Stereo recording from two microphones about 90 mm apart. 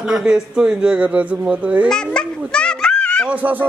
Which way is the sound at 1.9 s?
10° left (ahead or behind).